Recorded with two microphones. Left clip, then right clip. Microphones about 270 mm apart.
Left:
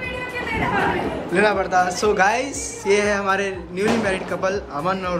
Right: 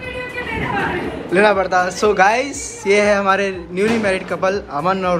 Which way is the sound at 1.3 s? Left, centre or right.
Centre.